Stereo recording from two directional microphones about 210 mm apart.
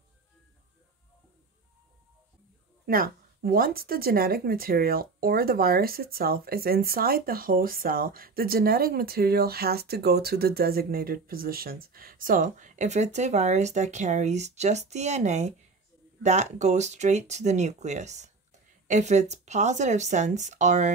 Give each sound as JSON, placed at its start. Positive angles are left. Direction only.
{"t": 2.9, "sound": "speech", "side_deg": -45}